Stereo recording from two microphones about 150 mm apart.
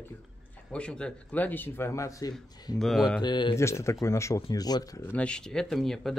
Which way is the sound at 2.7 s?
Centre (ahead or behind).